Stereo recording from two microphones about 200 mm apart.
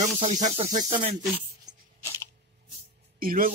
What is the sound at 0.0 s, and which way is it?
Speech, 35° right (ahead or behind).